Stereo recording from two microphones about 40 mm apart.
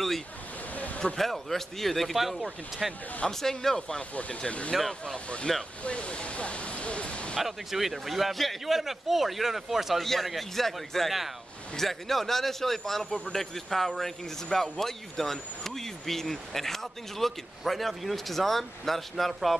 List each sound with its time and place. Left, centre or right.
0.7 s a sound: left
1.1 s a man's voice: centre
3.3 s a man's voice: centre
4.1 s speech: left
7.4 s a man's voice: centre